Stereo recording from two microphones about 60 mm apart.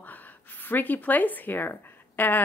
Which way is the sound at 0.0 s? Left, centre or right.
Left.